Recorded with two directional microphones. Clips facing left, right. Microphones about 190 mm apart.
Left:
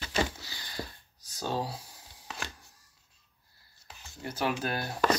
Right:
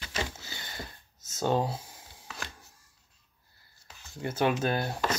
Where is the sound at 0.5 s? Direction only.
25° right (ahead or behind).